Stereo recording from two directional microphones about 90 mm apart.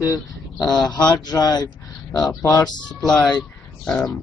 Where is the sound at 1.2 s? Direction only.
50° left (ahead or behind).